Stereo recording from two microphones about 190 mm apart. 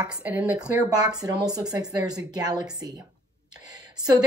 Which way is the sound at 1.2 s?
20° right (ahead or behind).